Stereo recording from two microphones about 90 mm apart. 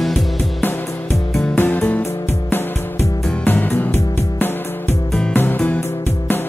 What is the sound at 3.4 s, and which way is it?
Music, 20° left (ahead or behind).